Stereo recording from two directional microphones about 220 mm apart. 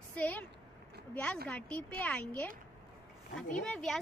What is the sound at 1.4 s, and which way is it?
Speech, 5° left (ahead or behind).